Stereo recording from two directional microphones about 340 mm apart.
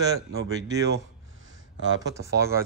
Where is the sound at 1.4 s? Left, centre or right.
Right.